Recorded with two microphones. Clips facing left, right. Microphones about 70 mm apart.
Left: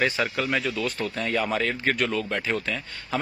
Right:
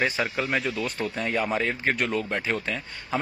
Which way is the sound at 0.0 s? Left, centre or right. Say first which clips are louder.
Left 1 dB; centre.